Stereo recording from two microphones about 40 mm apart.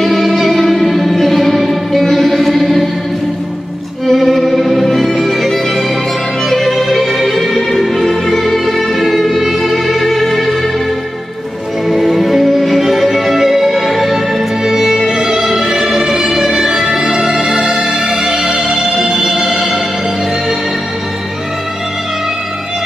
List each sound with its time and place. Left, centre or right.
0.0 s music: centre
2.6 s music: centre
4.0 s music: centre
12.0 s music: centre
17.6 s music: right
18.0 s music: centre